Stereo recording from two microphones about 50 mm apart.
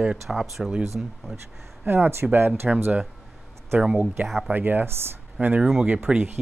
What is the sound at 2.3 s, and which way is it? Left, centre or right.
Speech, right.